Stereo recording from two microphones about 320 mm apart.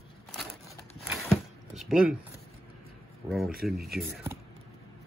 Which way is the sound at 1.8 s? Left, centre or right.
Centre.